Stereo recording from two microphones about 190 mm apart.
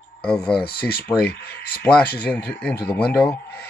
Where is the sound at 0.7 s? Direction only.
55° left (ahead or behind).